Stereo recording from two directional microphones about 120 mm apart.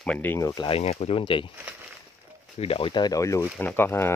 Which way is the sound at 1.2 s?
45° left (ahead or behind).